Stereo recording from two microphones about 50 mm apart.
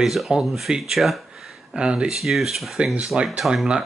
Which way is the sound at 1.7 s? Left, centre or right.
Centre.